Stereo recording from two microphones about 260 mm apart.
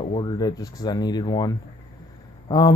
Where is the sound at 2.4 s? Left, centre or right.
Centre.